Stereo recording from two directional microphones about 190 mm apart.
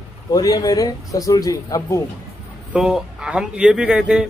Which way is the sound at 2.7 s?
5° right (ahead or behind).